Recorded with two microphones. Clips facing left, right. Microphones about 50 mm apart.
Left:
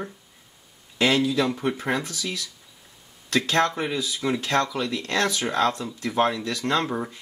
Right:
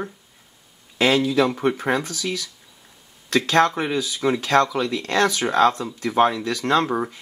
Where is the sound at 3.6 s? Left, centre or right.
Right.